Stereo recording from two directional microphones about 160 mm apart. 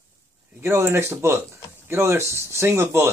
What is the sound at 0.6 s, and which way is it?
Speech, 15° right (ahead or behind).